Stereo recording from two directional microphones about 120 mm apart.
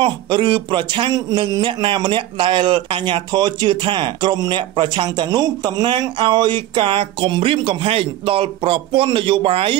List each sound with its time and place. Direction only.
0.0 s speech: 45° right (ahead or behind)